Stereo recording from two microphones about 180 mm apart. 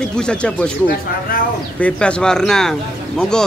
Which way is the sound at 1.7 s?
5° left (ahead or behind).